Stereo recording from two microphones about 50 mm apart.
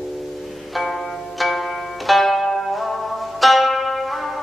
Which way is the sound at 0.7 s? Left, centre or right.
Centre.